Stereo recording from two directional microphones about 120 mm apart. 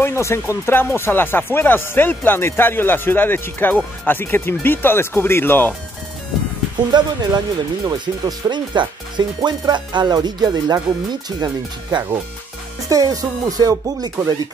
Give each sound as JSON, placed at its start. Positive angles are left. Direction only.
{"t": 0.0, "sound": "speech", "side_deg": 20}
{"t": 6.9, "sound": "speech", "side_deg": -35}